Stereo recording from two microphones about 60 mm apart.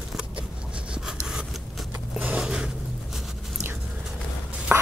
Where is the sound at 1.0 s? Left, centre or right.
Centre.